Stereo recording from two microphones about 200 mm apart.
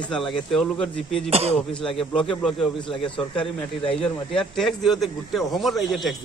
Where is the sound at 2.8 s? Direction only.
25° left (ahead or behind).